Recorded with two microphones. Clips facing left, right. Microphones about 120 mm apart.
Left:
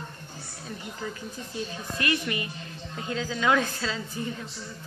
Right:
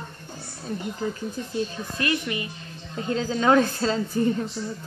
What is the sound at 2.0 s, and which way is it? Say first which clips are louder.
A woman's voice: right 2 dB; 25° right (ahead or behind).